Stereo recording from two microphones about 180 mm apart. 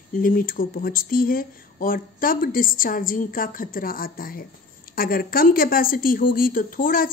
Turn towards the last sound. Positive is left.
turn(degrees=50)  # may be behind; listen again after turning